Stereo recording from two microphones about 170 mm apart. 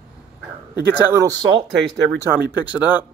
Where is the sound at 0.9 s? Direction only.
15° right (ahead or behind).